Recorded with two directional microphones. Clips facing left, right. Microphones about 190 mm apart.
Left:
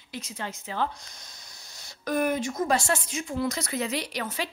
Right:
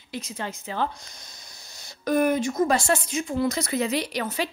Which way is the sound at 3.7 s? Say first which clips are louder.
Right 4 dB; 20° right (ahead or behind).